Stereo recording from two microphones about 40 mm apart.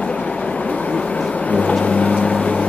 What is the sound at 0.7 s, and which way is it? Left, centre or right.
Vehicle, left.